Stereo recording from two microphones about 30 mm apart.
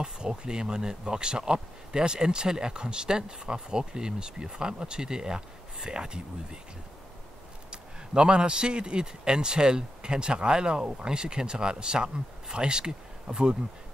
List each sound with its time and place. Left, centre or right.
0.0 s speech: right
7.7 s speech: right